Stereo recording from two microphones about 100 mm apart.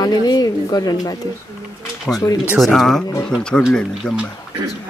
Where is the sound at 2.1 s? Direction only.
10° left (ahead or behind).